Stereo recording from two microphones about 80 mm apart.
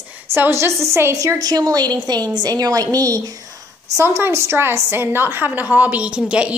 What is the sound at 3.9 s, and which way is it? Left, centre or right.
A woman's voice, right.